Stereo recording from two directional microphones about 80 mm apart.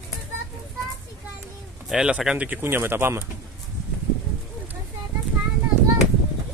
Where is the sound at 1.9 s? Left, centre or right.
Centre.